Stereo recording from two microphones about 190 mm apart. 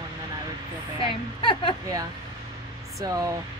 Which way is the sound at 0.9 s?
25° left (ahead or behind).